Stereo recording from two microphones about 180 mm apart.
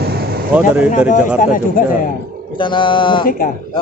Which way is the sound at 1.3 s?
50° left (ahead or behind).